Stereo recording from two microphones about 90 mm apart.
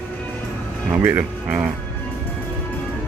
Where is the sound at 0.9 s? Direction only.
20° right (ahead or behind).